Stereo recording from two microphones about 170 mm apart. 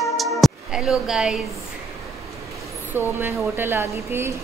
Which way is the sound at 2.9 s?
10° right (ahead or behind).